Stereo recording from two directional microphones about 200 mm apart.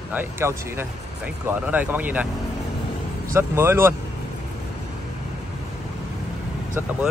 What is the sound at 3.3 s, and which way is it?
Speech, 10° right (ahead or behind).